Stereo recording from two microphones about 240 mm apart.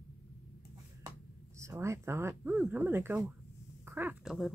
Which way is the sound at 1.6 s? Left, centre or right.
Centre.